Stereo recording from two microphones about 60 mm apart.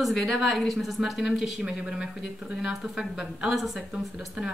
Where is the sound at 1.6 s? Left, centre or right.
Centre.